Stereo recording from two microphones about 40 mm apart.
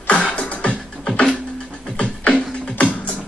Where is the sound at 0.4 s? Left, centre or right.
Left.